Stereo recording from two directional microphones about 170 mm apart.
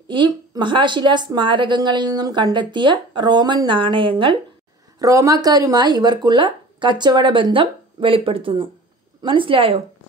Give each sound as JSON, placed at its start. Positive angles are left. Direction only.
{"t": 0.1, "sound": "a woman's voice", "side_deg": -30}
{"t": 4.9, "sound": "a woman's voice", "side_deg": -20}